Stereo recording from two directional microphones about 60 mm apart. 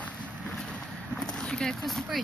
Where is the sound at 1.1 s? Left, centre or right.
Centre.